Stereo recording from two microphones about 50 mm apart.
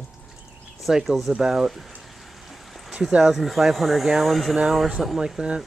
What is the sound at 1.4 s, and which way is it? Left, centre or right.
Speech, centre.